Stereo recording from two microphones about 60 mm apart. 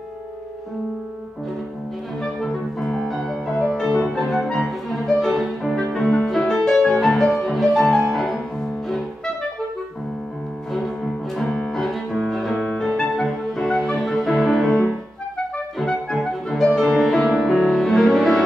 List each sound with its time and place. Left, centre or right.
2.4 s music: centre
11.5 s music: centre
14.9 s clarinet: centre
15.9 s music: centre